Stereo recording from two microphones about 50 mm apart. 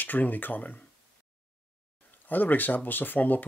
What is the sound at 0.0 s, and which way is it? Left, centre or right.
Speech, left.